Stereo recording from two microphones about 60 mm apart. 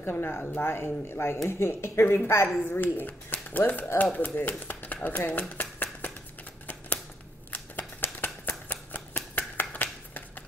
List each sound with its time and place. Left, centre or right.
0.0 s speech: left
5.0 s a sound: left
7.5 s shuffling cards: left
9.6 s finger snapping: left